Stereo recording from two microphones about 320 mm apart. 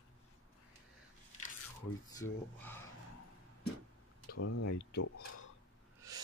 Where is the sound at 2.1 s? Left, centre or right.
Centre.